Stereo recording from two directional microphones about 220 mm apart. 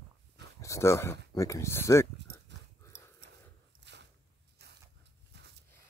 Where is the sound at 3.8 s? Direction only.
50° right (ahead or behind).